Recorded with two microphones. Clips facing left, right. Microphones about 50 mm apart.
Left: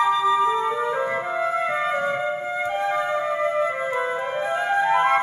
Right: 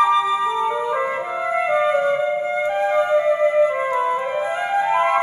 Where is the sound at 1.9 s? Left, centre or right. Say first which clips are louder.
Right 5 dB; centre.